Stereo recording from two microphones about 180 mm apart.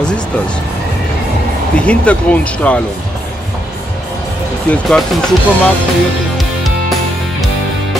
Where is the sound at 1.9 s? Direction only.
5° left (ahead or behind).